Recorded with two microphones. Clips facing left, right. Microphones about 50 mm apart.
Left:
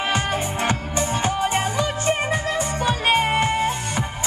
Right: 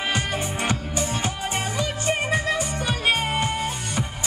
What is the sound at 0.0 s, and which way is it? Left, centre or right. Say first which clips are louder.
Music: left 3 dB; left.